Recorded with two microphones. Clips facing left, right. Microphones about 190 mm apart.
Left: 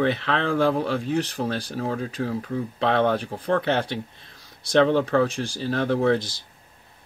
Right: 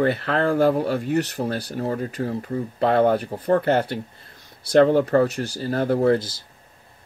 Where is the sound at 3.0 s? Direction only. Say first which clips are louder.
Right 3 dB; 10° right (ahead or behind).